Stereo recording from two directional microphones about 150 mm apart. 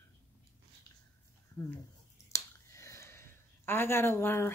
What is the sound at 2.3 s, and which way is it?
Speech, 20° left (ahead or behind).